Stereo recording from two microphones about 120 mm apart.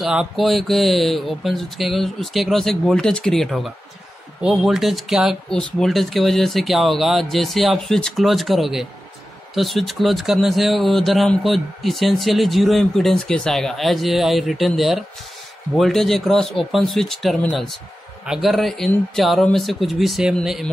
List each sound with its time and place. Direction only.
0.0 s speech: 5° right (ahead or behind)